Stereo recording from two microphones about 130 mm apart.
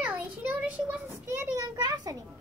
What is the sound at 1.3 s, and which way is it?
Speech, 25° right (ahead or behind).